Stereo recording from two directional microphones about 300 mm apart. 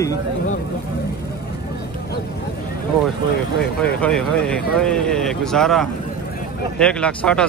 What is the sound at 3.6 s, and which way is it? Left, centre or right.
Speech, centre.